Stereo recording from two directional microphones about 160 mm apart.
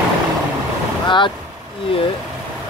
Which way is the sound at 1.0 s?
30° left (ahead or behind).